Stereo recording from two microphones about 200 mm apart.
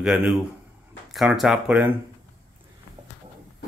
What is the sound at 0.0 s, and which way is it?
Speech, 5° right (ahead or behind).